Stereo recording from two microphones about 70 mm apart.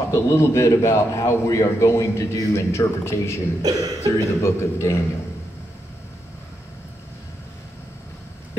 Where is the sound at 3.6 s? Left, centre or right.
Right.